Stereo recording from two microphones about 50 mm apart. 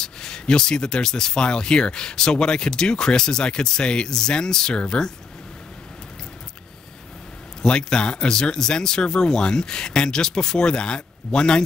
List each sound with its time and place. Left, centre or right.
0.0 s speech: centre
7.6 s speech: centre